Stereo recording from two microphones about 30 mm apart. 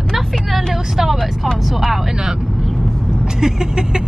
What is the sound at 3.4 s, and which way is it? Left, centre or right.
Vehicle, right.